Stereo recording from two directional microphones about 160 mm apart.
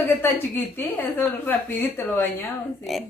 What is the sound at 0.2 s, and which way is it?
A woman's voice, 15° left (ahead or behind).